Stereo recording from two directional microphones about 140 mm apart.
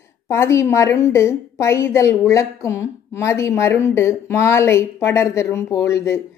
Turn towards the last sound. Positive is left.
turn(degrees=20)  # may be behind; listen again after turning